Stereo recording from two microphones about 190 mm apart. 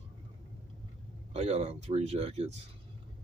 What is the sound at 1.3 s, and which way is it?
Speech, 35° right (ahead or behind).